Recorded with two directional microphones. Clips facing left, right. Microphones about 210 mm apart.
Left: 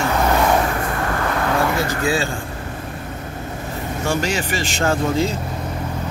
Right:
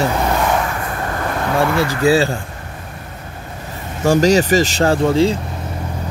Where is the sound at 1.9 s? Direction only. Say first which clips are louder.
Right 6 dB; 35° right (ahead or behind).